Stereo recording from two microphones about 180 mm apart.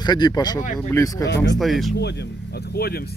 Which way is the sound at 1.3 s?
70° left (ahead or behind).